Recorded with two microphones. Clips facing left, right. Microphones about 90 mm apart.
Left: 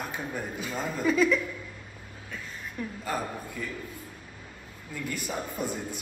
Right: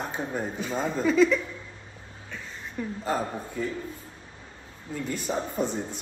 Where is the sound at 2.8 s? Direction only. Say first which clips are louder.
Right 4 dB; 30° right (ahead or behind).